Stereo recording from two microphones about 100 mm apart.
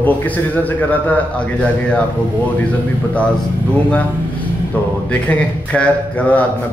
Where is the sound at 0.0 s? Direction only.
15° left (ahead or behind).